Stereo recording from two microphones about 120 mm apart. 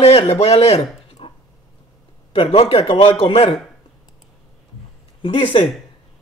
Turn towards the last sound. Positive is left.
turn(degrees=50)  # may be behind; listen again after turning